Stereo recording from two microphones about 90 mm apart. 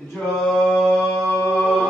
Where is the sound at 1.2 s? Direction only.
15° left (ahead or behind).